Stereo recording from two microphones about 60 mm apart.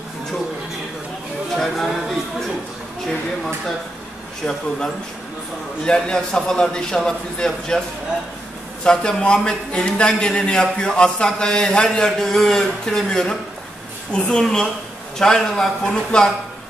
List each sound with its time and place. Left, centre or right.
4.5 s a man's voice: centre
8.8 s a man's voice: centre